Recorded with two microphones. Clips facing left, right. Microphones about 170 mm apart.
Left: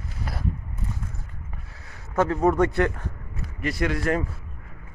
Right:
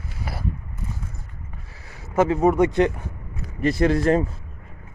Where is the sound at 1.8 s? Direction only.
10° right (ahead or behind).